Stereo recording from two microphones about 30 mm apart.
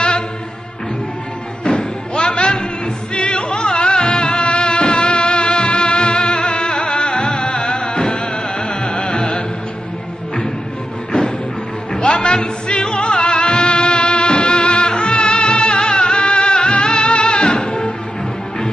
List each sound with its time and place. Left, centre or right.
1.6 s music: left
11.1 s music: left